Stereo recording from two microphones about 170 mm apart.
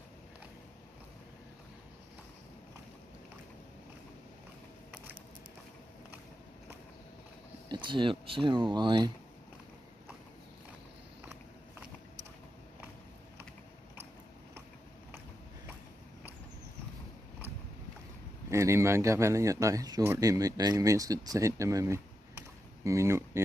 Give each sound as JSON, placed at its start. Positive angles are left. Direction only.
{"t": 7.7, "sound": "speech", "side_deg": -30}
{"t": 18.5, "sound": "speech", "side_deg": -15}